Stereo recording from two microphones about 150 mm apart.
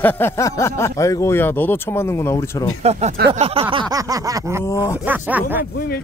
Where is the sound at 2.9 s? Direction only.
45° right (ahead or behind).